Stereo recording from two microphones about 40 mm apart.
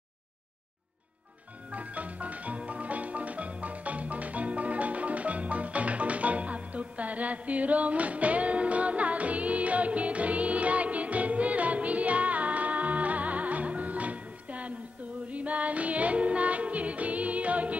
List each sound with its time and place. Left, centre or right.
1.7 s music: right